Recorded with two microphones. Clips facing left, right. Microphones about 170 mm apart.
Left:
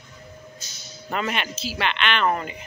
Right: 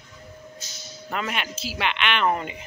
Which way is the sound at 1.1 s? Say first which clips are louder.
Left 2 dB; centre (ahead or behind).